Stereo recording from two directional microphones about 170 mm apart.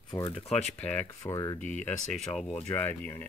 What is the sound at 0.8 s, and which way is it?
Speech, 10° left (ahead or behind).